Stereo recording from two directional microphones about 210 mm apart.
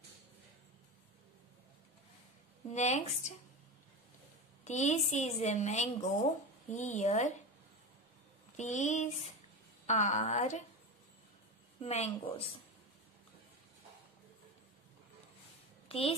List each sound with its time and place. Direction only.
2.7 s a woman's voice: 35° left (ahead or behind)
4.6 s a woman's voice: 35° left (ahead or behind)
8.5 s a woman's voice: 35° left (ahead or behind)
11.8 s a woman's voice: 30° left (ahead or behind)
15.9 s a woman's voice: 25° left (ahead or behind)